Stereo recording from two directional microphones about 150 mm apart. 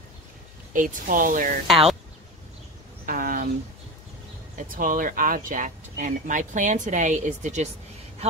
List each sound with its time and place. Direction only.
0.7 s a woman's voice: 60° right (ahead or behind)
1.7 s speech: centre (ahead or behind)
3.1 s a sound: 70° right (ahead or behind)
4.6 s a woman's voice: 65° right (ahead or behind)